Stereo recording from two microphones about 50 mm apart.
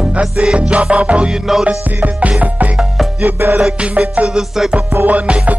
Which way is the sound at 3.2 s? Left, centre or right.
Right.